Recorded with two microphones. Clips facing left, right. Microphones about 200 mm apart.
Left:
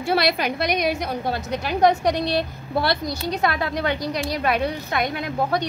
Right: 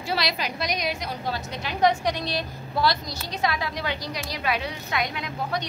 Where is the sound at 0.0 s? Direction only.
55° left (ahead or behind).